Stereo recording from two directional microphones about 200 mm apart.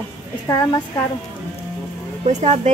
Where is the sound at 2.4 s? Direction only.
35° right (ahead or behind).